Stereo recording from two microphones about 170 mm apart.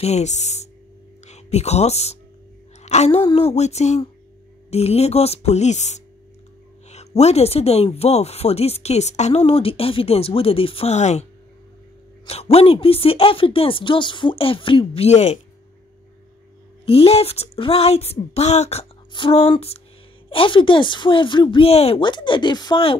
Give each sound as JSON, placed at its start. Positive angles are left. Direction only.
{"t": 0.0, "sound": "speech", "side_deg": 40}
{"t": 12.3, "sound": "speech", "side_deg": 35}
{"t": 16.8, "sound": "speech", "side_deg": 35}